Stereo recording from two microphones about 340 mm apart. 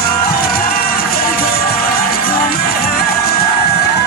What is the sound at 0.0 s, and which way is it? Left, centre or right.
Music, left.